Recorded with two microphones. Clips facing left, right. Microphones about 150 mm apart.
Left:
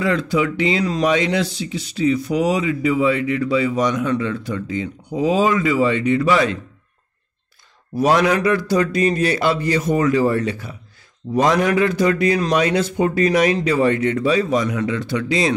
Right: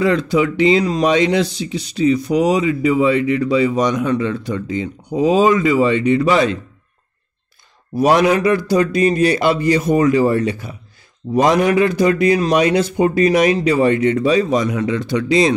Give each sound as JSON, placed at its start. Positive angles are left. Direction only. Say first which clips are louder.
{"t": 0.0, "sound": "speech", "louder": "right 4 dB", "side_deg": -20}
{"t": 7.9, "sound": "speech", "louder": "right 3 dB", "side_deg": -15}